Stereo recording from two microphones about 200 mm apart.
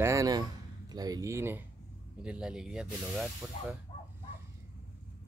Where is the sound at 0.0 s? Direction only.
15° right (ahead or behind).